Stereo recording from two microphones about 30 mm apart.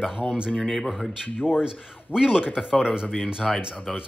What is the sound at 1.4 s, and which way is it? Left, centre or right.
Speech, right.